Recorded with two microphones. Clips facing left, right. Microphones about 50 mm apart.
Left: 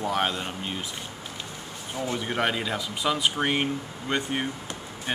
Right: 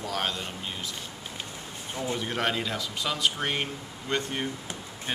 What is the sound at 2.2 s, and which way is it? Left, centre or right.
Speech, centre.